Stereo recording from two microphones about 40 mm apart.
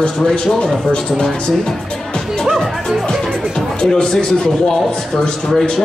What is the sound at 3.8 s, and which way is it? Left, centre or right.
Speech, centre.